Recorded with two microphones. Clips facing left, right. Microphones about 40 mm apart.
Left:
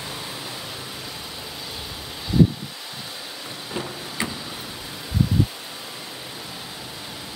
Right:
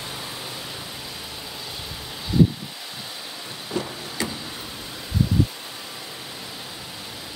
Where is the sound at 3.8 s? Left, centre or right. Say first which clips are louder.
Right 3 dB; left.